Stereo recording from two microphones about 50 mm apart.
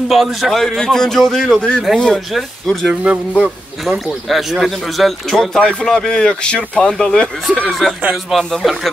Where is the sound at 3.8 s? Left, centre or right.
Centre.